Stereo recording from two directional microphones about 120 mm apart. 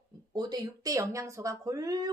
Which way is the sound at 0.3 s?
35° right (ahead or behind).